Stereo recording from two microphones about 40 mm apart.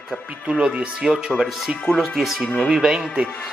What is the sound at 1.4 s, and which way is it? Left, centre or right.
Speech, centre.